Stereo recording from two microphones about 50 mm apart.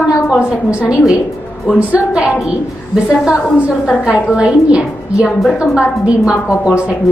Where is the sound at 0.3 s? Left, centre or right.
Centre.